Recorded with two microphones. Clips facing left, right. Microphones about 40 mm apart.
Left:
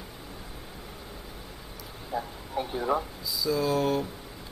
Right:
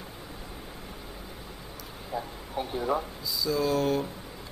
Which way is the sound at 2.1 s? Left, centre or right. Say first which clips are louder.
Left 2 dB; centre.